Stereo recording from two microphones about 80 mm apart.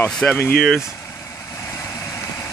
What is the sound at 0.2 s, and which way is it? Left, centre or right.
Speech, centre.